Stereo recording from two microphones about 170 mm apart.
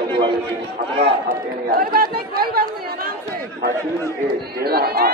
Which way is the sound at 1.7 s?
60° right (ahead or behind).